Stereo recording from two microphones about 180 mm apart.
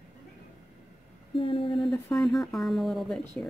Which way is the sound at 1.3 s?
30° left (ahead or behind).